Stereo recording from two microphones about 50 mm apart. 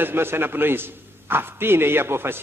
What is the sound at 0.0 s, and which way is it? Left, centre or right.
A man's voice, right.